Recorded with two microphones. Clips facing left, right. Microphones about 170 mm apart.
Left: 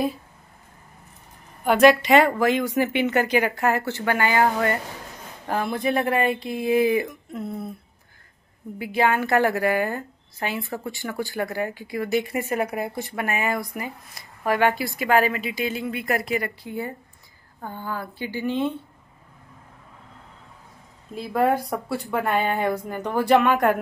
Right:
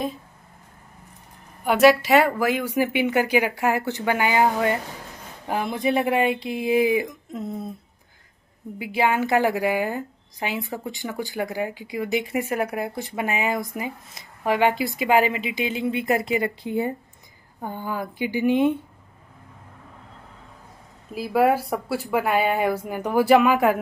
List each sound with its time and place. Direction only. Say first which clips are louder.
1.6 s speech: even; 5° right (ahead or behind)
8.7 s speech: even; 15° right (ahead or behind)
13.0 s speech: right 2 dB; 15° right (ahead or behind)
21.1 s speech: right 2 dB; 5° right (ahead or behind)